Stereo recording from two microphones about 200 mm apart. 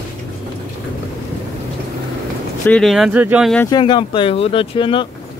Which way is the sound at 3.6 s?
25° left (ahead or behind).